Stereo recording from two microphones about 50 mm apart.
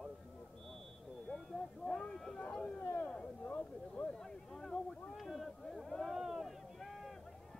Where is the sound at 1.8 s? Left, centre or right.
Centre.